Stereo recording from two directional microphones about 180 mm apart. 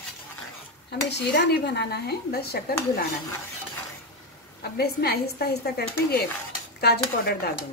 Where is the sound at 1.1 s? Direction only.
70° left (ahead or behind).